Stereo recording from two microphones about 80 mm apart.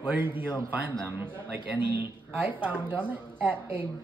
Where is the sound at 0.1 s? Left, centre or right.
Right.